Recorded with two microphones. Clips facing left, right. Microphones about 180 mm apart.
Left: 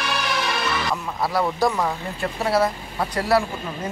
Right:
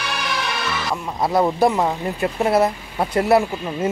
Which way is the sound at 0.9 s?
20° right (ahead or behind).